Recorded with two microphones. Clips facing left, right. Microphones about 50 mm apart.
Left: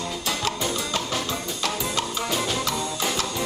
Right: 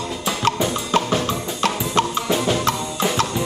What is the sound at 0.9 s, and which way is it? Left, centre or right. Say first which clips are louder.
Drum: right 7 dB; right.